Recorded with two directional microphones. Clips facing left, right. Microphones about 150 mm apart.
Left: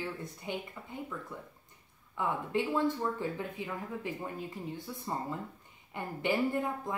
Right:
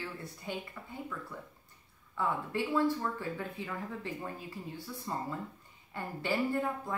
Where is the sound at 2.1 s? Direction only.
20° left (ahead or behind).